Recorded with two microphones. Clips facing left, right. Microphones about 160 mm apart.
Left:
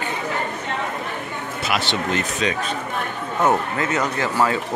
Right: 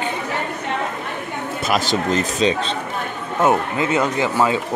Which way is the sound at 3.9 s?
25° right (ahead or behind).